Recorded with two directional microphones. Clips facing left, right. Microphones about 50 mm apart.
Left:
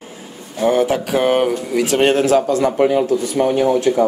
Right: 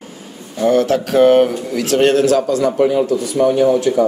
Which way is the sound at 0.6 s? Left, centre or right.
Centre.